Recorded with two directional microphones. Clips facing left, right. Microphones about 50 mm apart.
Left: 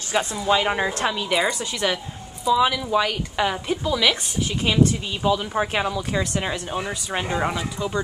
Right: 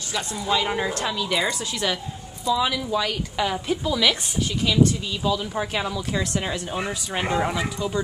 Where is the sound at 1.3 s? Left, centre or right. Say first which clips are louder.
Left 2 dB; centre.